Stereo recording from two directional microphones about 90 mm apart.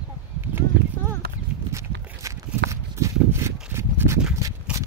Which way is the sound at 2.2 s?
35° right (ahead or behind).